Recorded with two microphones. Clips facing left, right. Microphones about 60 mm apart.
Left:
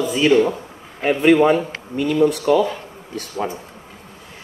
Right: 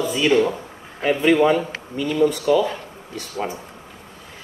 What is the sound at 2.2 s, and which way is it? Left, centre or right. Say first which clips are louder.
Speech: even; left.